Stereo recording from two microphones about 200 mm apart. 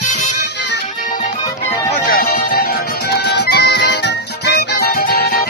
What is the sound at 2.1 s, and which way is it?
Music, 45° left (ahead or behind).